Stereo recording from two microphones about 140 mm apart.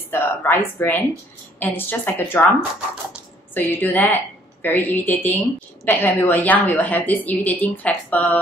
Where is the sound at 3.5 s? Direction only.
15° left (ahead or behind).